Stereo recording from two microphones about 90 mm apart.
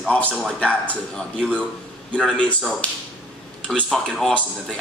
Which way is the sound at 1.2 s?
5° left (ahead or behind).